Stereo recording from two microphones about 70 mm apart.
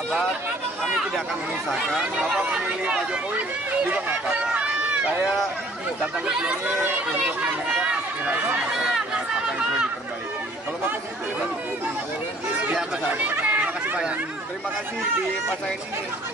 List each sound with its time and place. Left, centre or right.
2.3 s speech: centre
6.8 s speech: centre
13.1 s speech: right